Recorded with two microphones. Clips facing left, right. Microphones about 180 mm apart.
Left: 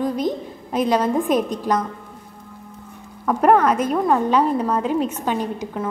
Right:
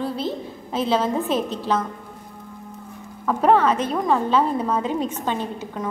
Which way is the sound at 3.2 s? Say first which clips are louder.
Left 2 dB; 10° left (ahead or behind).